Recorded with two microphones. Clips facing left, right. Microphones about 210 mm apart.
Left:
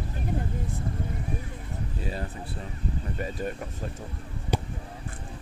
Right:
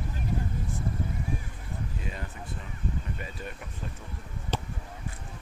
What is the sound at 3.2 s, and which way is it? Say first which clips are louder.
Speech: left 8 dB; 40° left (ahead or behind).